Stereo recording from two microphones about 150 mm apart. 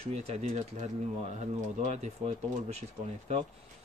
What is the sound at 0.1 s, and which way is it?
Speech, 50° right (ahead or behind).